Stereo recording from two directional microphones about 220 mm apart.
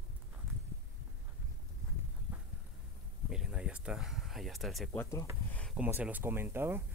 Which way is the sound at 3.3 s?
5° right (ahead or behind).